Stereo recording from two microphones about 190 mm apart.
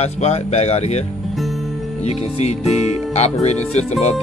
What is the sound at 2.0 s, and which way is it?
Speech, 35° left (ahead or behind).